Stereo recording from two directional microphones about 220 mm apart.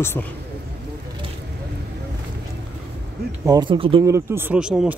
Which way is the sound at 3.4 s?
20° right (ahead or behind).